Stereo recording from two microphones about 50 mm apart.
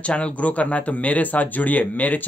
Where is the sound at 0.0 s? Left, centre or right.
Left.